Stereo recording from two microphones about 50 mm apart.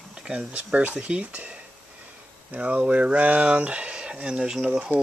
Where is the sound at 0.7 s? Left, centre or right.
Right.